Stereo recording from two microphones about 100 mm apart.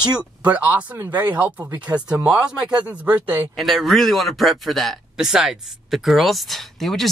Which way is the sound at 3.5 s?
Centre (ahead or behind).